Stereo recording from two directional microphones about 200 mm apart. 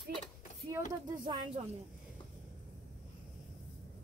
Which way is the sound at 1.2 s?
30° right (ahead or behind).